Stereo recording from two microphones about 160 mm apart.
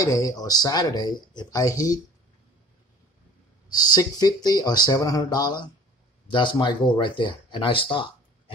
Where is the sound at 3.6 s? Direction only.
25° left (ahead or behind).